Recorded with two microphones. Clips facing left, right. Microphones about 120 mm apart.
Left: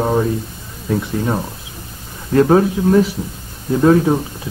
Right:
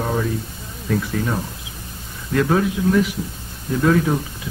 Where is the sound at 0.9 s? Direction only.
20° left (ahead or behind).